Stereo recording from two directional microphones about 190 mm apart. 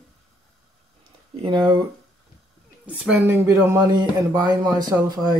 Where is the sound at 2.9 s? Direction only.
5° right (ahead or behind).